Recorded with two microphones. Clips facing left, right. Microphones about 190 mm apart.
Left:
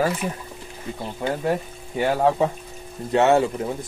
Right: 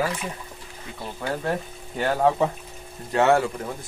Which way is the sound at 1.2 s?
20° left (ahead or behind).